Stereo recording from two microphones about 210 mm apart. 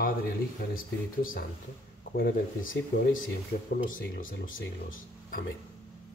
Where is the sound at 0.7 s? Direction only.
40° left (ahead or behind).